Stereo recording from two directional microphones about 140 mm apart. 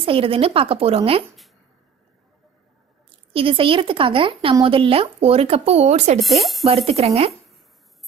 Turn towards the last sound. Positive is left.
turn(degrees=-45)  # may be behind; listen again after turning